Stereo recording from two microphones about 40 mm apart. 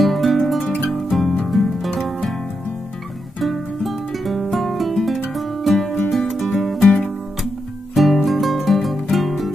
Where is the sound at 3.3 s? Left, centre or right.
Centre.